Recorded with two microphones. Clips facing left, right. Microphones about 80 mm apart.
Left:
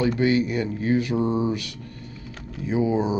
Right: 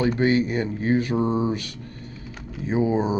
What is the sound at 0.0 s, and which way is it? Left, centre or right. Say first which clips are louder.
Speech: even; right.